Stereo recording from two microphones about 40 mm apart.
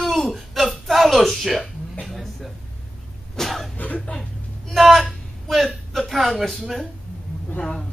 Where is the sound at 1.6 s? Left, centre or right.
Centre.